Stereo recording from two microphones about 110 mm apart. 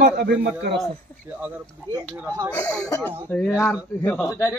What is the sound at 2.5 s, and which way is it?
Speech, 10° left (ahead or behind).